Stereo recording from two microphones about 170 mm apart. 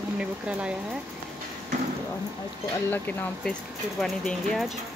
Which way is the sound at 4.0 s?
Centre (ahead or behind).